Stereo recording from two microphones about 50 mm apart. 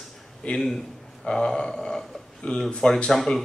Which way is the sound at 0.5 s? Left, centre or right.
Left.